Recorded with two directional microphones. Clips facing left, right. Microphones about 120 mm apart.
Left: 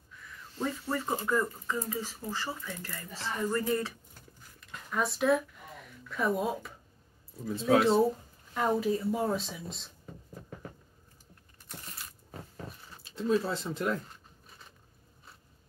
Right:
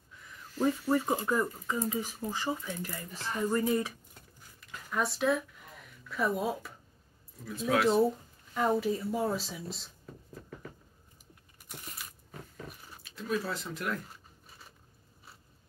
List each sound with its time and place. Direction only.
0.6 s speech: 20° right (ahead or behind)
4.6 s a sound: centre (ahead or behind)
6.0 s speech: centre (ahead or behind)
7.7 s speech: 30° left (ahead or behind)
8.5 s speech: centre (ahead or behind)
13.0 s speech: 25° left (ahead or behind)